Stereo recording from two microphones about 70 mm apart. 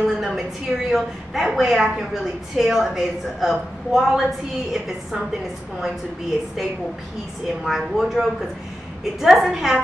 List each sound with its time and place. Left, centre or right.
0.2 s a woman's voice: centre
7.4 s a woman's voice: centre